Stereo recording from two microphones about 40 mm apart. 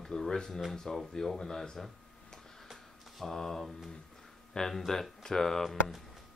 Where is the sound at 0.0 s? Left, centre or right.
Centre.